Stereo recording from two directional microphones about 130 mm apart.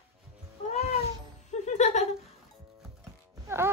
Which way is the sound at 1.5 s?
65° left (ahead or behind).